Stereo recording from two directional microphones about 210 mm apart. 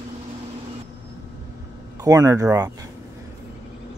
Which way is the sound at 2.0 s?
15° right (ahead or behind).